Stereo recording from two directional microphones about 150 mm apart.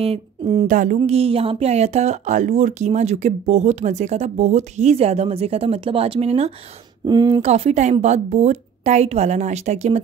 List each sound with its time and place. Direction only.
0.0 s speech: 40° right (ahead or behind)
0.7 s speech: 60° right (ahead or behind)
0.9 s speech: 40° right (ahead or behind)
7.1 s speech: 25° right (ahead or behind)
7.4 s speech: 45° right (ahead or behind)